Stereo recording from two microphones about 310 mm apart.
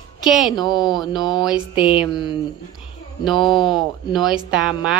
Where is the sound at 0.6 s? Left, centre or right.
Centre.